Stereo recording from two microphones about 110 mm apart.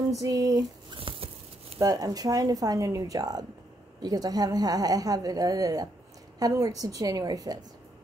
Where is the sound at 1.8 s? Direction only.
35° right (ahead or behind).